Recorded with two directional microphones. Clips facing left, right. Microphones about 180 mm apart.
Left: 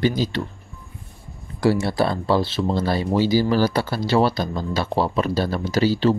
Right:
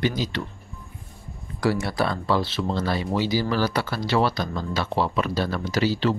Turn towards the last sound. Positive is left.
turn(degrees=35)  # may be behind; listen again after turning